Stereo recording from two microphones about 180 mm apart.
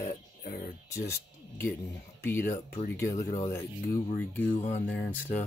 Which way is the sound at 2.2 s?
15° left (ahead or behind).